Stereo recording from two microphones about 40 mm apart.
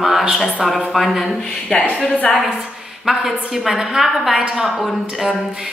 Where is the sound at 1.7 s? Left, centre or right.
Centre.